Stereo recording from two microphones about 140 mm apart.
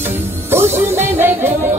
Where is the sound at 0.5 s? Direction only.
15° right (ahead or behind).